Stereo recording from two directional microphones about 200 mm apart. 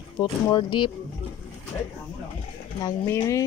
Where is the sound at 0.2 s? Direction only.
20° left (ahead or behind).